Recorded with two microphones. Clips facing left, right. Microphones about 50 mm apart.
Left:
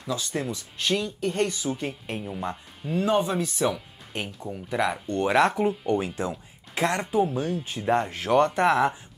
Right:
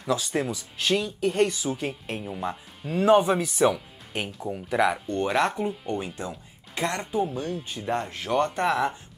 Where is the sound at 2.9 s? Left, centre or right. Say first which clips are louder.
Right 4 dB; right; by 5.3 s centre.